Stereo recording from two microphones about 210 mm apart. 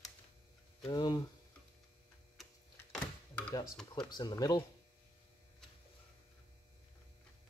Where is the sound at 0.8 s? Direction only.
20° left (ahead or behind).